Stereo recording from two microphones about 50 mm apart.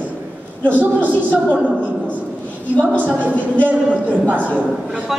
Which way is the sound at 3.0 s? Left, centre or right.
Right.